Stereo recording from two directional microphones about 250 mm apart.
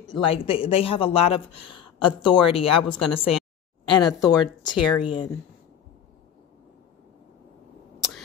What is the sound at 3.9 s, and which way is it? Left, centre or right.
Speech, centre.